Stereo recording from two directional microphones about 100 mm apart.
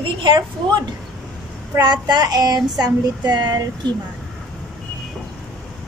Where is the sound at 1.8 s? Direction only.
45° right (ahead or behind).